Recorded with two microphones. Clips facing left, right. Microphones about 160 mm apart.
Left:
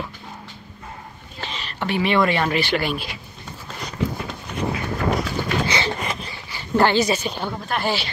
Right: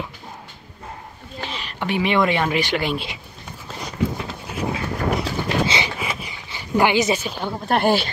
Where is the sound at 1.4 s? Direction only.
10° right (ahead or behind).